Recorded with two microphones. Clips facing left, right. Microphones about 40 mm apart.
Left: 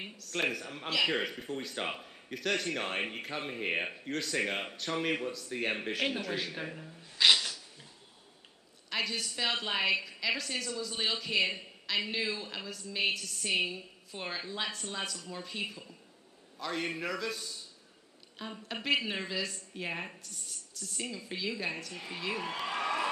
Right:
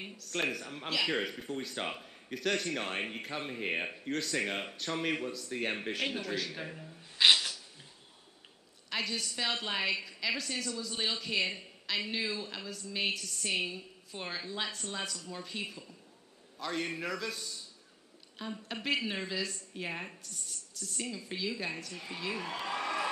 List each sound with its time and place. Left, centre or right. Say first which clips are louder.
0.2 s a man's voice: left 1 dB; centre
7.2 s sneeze: even; centre
8.9 s speech: left 1 dB; centre
18.7 s a man's voice: left 2 dB; centre